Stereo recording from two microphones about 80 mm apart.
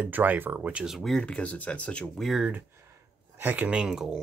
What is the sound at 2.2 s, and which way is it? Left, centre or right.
Speech, centre.